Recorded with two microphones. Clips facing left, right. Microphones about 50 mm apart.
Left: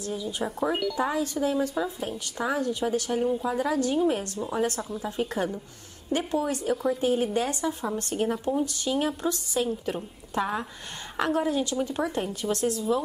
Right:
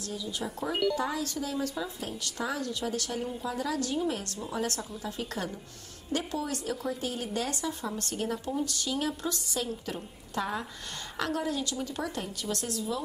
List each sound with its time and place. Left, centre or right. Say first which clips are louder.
0.0 s speech: left 5 dB; left
0.6 s speech: left 1 dB; centre
0.9 s speech: left 5 dB; left
8.3 s speech: left 5 dB; centre